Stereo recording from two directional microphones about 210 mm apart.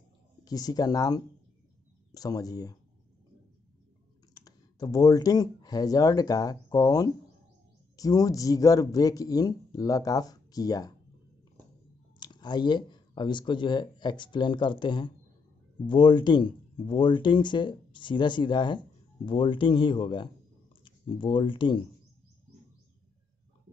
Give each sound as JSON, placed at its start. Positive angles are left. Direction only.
{"t": 0.5, "sound": "speech", "side_deg": 20}
{"t": 4.3, "sound": "speech", "side_deg": 20}
{"t": 12.2, "sound": "speech", "side_deg": 20}